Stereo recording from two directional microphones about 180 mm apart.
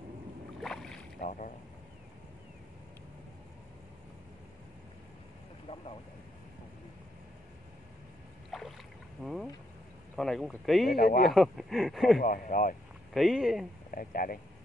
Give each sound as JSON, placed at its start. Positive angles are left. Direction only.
{"t": 0.6, "sound": "boat", "side_deg": 0}
{"t": 5.7, "sound": "vehicle", "side_deg": 30}
{"t": 8.5, "sound": "rowboat", "side_deg": 0}
{"t": 9.2, "sound": "boat", "side_deg": 0}
{"t": 10.1, "sound": "speech", "side_deg": 0}
{"t": 10.9, "sound": "speech", "side_deg": 55}
{"t": 11.2, "sound": "speech", "side_deg": 0}
{"t": 12.2, "sound": "speech", "side_deg": 50}
{"t": 13.1, "sound": "speech", "side_deg": 0}
{"t": 13.9, "sound": "speech", "side_deg": 50}